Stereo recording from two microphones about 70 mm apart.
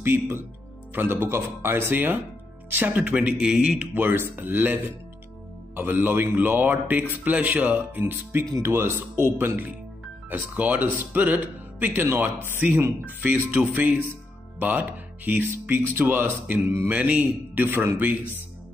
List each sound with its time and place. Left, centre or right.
0.0 s speech: right; by 3.9 s centre
3.9 s speech: right
11.9 s speech: right
16.9 s speech: centre
17.6 s speech: right